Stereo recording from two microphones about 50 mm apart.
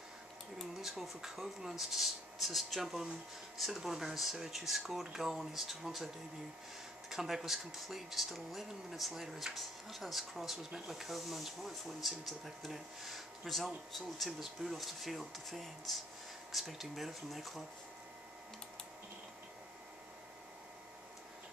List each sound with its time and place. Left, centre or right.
0.7 s speech: centre
7.1 s speech: centre